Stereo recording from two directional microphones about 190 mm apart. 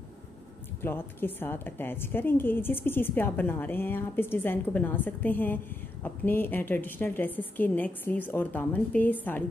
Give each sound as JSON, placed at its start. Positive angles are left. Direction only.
{"t": 0.8, "sound": "a woman's voice", "side_deg": 10}